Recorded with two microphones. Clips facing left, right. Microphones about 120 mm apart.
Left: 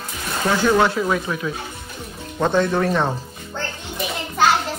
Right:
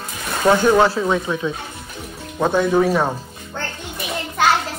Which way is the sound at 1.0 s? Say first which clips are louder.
Right 2 dB; 25° right (ahead or behind).